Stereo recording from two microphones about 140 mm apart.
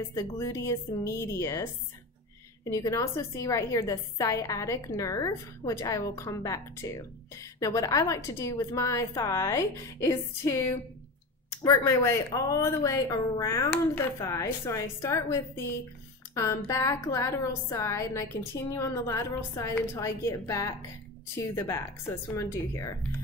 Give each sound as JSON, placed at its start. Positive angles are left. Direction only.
{"t": 0.1, "sound": "a woman's voice", "side_deg": 20}
{"t": 2.7, "sound": "a woman's voice", "side_deg": 25}